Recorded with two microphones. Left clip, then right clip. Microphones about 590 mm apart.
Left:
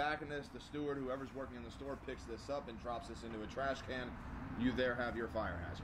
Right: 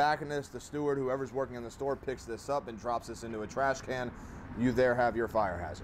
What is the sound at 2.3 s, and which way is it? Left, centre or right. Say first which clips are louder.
Speech: right 9 dB; right.